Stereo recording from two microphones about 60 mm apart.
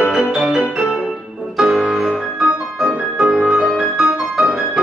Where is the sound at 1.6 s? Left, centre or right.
Centre.